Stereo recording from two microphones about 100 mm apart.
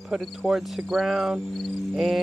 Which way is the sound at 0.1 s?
Centre (ahead or behind).